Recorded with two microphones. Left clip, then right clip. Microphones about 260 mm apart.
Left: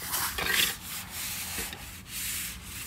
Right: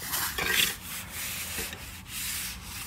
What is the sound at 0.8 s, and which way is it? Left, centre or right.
Sanding, centre.